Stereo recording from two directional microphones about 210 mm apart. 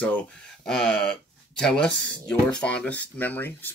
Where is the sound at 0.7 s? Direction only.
5° left (ahead or behind).